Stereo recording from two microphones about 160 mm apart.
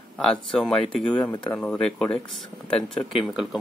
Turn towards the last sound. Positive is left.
turn(degrees=0)  # may be behind; listen again after turning